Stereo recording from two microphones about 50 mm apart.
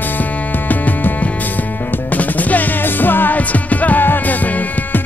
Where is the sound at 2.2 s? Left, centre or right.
Left.